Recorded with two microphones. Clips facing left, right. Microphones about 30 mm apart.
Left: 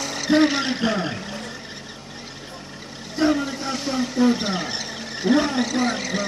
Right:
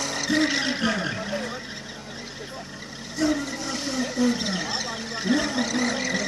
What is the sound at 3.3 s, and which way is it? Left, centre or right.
Vehicle, left.